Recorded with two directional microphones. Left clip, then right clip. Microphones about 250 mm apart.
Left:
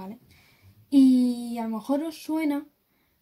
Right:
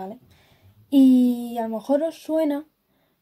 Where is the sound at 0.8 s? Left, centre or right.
Centre.